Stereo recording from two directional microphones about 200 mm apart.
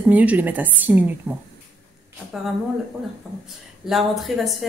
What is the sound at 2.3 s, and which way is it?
Speech, centre (ahead or behind).